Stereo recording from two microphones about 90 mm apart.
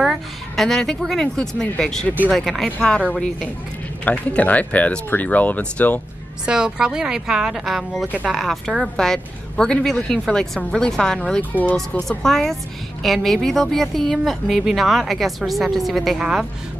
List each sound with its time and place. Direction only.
0.6 s speech: 5° left (ahead or behind)
4.0 s a woman's voice: 15° left (ahead or behind)
6.4 s a woman's voice: 10° right (ahead or behind)